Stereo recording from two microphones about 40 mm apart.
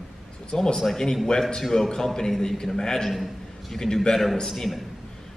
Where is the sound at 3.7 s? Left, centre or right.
Centre.